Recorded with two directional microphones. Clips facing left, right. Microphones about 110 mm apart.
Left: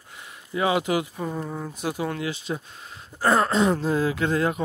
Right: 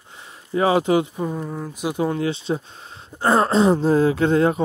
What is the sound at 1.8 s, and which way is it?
Speech, 25° right (ahead or behind).